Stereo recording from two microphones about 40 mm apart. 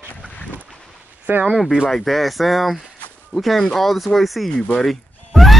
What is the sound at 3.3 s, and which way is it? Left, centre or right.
Speech, right.